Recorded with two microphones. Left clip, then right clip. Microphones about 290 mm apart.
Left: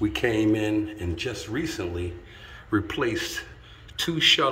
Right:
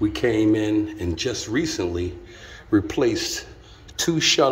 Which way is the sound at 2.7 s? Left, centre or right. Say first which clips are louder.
Right 5 dB; centre.